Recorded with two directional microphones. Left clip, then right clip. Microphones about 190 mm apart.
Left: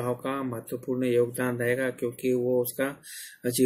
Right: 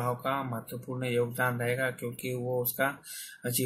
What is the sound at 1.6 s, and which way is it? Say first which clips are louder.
Speech: left 4 dB; 45° left (ahead or behind).